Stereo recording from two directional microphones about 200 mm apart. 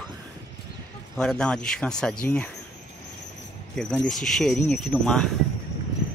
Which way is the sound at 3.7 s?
5° left (ahead or behind).